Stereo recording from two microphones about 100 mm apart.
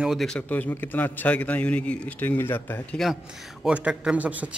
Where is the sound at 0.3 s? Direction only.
15° left (ahead or behind).